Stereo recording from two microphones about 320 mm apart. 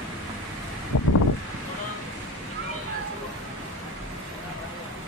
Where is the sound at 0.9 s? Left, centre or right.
Left.